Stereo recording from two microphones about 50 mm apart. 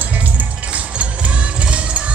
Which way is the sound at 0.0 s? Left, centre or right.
Right.